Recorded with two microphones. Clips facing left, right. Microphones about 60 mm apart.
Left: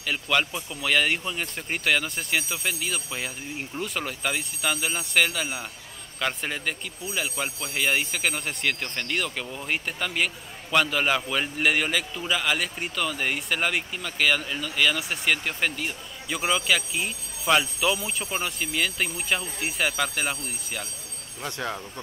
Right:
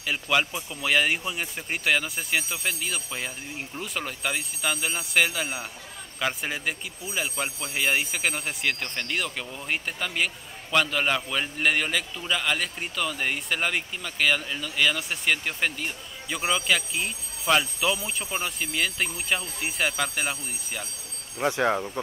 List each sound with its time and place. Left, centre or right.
0.0 s a man's voice: centre
21.5 s speech: right